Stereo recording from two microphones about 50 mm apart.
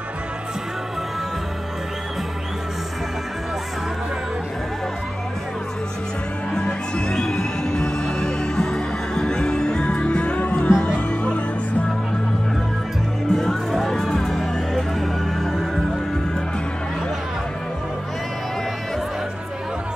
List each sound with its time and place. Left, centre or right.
6.5 s music: centre
9.8 s music: left
13.3 s music: centre